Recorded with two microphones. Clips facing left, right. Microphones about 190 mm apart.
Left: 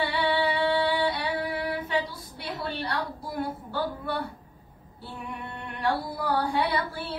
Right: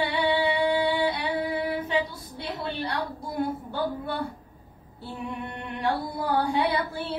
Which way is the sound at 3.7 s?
25° right (ahead or behind).